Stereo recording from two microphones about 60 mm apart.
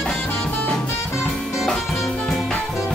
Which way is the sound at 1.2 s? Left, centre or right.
Centre.